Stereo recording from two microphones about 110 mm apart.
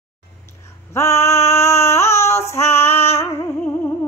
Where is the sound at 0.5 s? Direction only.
25° left (ahead or behind).